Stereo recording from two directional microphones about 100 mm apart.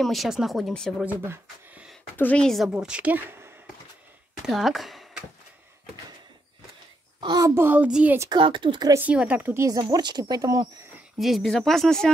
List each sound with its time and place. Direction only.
0.0 s speech: centre (ahead or behind)
1.2 s speech: 25° right (ahead or behind)
2.1 s a woman's voice: 15° left (ahead or behind)
2.4 s speech: centre (ahead or behind)
2.7 s speech: 10° right (ahead or behind)
4.5 s speech: centre (ahead or behind)
7.2 s a child's voice: 50° right (ahead or behind)
7.4 s a child's voice: 25° right (ahead or behind)
8.3 s speech: 55° right (ahead or behind)
9.0 s a child's voice: 15° right (ahead or behind)
9.7 s speech: 45° right (ahead or behind)
11.1 s speech: centre (ahead or behind)